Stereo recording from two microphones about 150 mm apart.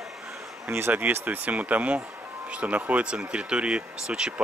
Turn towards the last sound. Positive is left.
turn(degrees=-5)  # may be behind; listen again after turning